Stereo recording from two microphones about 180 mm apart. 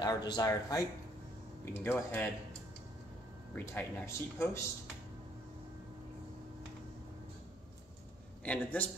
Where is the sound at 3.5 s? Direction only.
10° left (ahead or behind).